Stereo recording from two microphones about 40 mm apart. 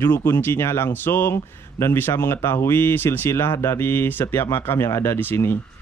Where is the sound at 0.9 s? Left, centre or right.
Left.